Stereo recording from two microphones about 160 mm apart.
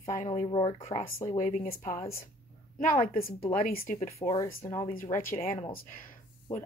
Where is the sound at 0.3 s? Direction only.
35° left (ahead or behind).